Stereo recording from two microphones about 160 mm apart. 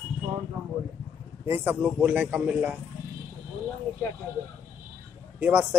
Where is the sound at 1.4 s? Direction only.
15° right (ahead or behind).